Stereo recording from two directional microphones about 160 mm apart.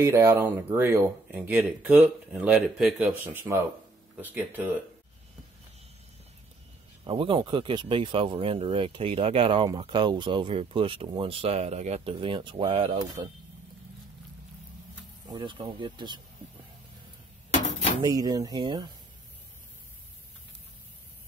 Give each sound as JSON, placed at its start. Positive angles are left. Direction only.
{"t": 0.0, "sound": "speech", "side_deg": -15}
{"t": 7.1, "sound": "speech", "side_deg": -30}
{"t": 15.2, "sound": "speech", "side_deg": -30}
{"t": 17.5, "sound": "dishes", "side_deg": 45}
{"t": 18.0, "sound": "speech", "side_deg": -25}